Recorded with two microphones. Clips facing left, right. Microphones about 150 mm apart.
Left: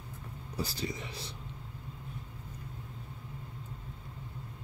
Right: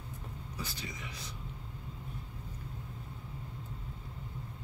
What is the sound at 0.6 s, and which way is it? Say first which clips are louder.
Speech: left 8 dB; 35° left (ahead or behind).